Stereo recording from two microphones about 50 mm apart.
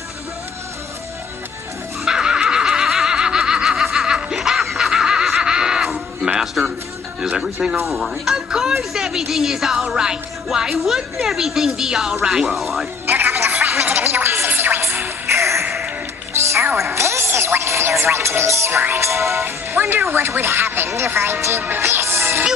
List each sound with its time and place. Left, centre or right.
2.0 s neigh: centre
3.8 s snicker: centre
5.4 s a sound: centre
6.2 s music: centre
7.2 s speech: centre
7.8 s a woman's voice: centre
13.0 s music: right
13.6 s gargling: right
13.8 s music: right
18.1 s speech: right
19.4 s speech: right
20.9 s speech: right
21.5 s music: right